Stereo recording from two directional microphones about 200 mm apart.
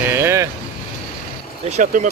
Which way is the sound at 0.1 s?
15° right (ahead or behind).